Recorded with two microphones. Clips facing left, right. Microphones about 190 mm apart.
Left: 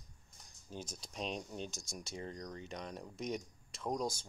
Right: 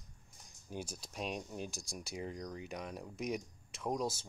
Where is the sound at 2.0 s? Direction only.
10° right (ahead or behind).